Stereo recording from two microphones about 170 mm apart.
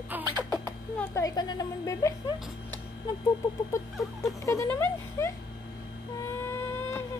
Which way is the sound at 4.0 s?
Centre (ahead or behind).